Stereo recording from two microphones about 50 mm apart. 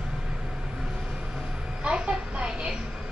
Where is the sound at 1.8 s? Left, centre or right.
Centre.